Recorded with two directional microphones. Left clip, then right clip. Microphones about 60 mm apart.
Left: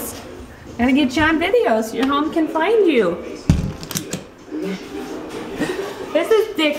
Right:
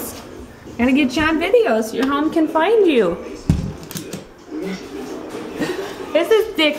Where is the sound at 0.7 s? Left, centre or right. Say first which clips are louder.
Even; centre.